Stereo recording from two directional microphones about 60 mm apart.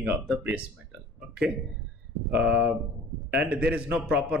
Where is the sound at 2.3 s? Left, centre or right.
Right.